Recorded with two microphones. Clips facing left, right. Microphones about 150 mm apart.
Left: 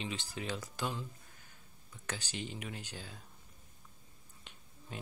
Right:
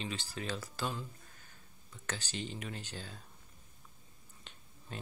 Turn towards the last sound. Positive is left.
turn(degrees=10)  # may be behind; listen again after turning